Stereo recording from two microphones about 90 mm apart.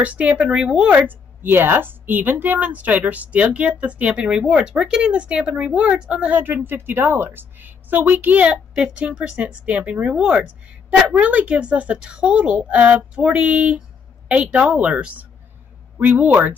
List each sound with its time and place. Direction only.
0.0 s a woman's voice: 15° right (ahead or behind)